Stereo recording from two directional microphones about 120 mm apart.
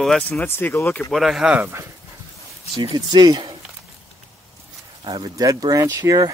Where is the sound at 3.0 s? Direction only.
35° right (ahead or behind).